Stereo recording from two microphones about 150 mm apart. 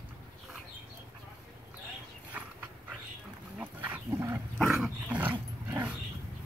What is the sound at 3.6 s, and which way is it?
Dog, 10° right (ahead or behind).